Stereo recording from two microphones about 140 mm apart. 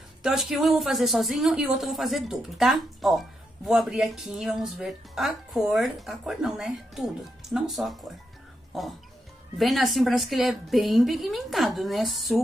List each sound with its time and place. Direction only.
0.2 s speech: centre (ahead or behind)
9.6 s speech: centre (ahead or behind)